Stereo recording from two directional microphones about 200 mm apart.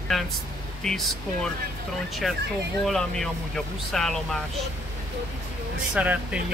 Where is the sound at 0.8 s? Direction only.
Centre (ahead or behind).